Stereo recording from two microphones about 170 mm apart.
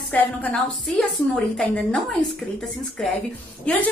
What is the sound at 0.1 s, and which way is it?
A woman's voice, 10° left (ahead or behind).